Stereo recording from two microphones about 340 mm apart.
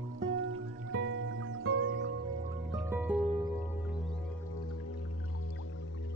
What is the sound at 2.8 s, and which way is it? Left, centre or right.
Music, centre.